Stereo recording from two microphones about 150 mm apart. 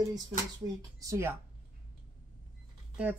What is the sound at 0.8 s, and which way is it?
Speech, 20° right (ahead or behind).